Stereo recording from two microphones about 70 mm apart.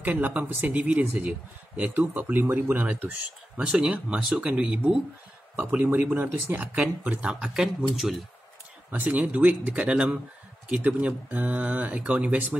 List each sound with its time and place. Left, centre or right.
0.0 s speech: right
5.6 s speech: right; by 8.2 s centre
8.9 s speech: right